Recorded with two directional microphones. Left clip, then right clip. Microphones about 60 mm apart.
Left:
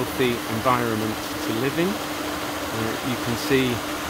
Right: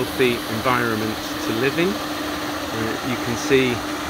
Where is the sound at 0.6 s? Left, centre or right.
Left.